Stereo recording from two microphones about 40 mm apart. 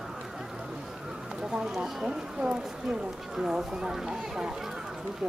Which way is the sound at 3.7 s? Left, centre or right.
Centre.